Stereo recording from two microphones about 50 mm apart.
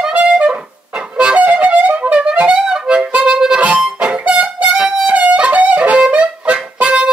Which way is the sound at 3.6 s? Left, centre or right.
Right.